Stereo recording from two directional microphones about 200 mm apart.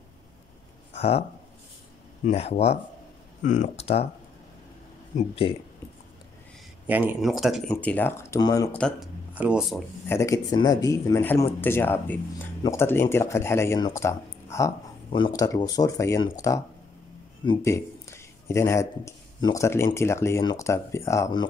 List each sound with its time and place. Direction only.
0.9 s speech: 30° left (ahead or behind)
2.2 s speech: 30° left (ahead or behind)
5.1 s speech: 30° left (ahead or behind)
6.9 s speech: 10° right (ahead or behind); by 8.7 s 20° left (ahead or behind)
8.7 s speech: 5° left (ahead or behind)
9.3 s speech: 5° right (ahead or behind)
10.0 s speech: 15° left (ahead or behind)
15.0 s speech: 25° left (ahead or behind)
17.6 s speech: 15° left (ahead or behind)